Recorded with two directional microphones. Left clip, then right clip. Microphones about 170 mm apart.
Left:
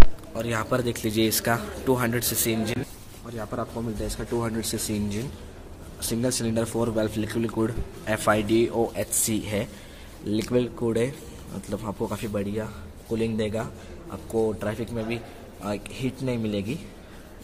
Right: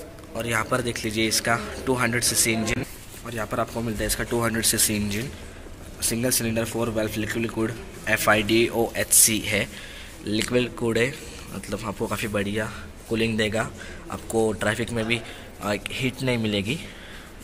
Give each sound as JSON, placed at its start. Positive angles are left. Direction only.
{"t": 0.3, "sound": "speech", "side_deg": 20}
{"t": 3.3, "sound": "speech", "side_deg": -5}
{"t": 11.9, "sound": "a man's voice", "side_deg": 5}